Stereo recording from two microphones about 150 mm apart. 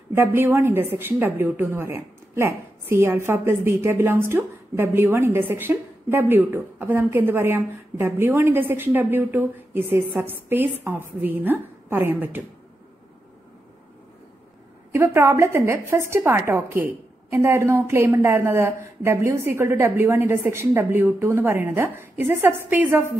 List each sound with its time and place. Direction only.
0.1 s a woman's voice: 15° right (ahead or behind)
14.9 s a woman's voice: 20° right (ahead or behind)